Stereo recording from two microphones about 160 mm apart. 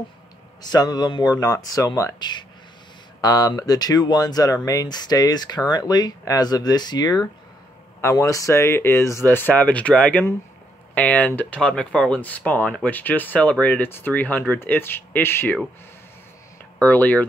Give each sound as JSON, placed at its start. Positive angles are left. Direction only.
{"t": 0.6, "sound": "speech", "side_deg": 25}
{"t": 16.8, "sound": "speech", "side_deg": 10}